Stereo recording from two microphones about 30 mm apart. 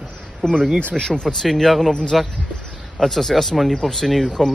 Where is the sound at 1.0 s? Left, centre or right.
Left.